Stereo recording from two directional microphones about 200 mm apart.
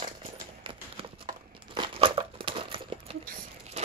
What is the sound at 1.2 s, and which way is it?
Crumpling, 25° right (ahead or behind).